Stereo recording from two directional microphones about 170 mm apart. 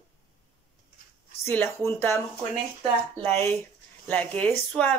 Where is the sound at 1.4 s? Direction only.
15° left (ahead or behind).